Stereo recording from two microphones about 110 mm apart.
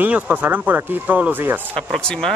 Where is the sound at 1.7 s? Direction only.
10° left (ahead or behind).